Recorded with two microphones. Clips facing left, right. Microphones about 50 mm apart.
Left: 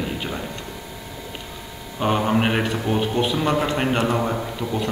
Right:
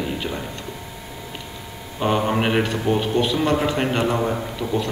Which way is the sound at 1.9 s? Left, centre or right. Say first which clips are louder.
Even; centre.